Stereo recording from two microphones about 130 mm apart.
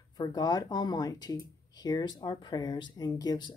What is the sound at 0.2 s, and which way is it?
Speech, 30° left (ahead or behind).